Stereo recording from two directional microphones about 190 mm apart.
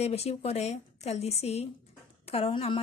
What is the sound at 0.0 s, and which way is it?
A woman's voice, 35° left (ahead or behind).